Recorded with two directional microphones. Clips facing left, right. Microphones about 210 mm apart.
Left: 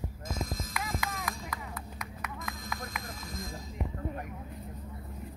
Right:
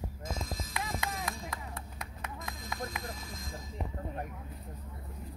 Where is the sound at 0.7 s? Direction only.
25° right (ahead or behind).